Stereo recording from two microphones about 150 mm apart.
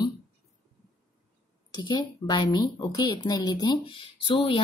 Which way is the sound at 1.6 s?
30° left (ahead or behind).